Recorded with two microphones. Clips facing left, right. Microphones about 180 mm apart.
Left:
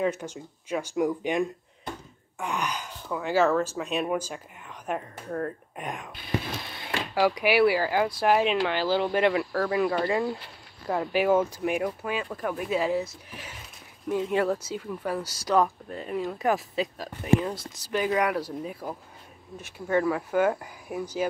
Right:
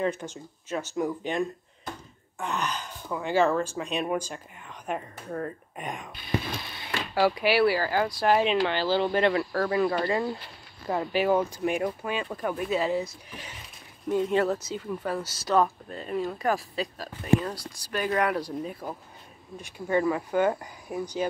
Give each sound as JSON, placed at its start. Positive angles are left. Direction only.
{"t": 0.0, "sound": "speech", "side_deg": 10}
{"t": 7.2, "sound": "speech", "side_deg": 15}
{"t": 18.0, "sound": "speech", "side_deg": 10}